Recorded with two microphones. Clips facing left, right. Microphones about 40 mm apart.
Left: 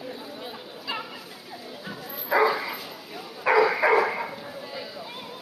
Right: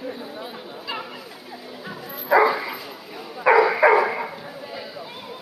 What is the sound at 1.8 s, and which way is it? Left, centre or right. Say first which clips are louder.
Bow-wow: right 7 dB; centre.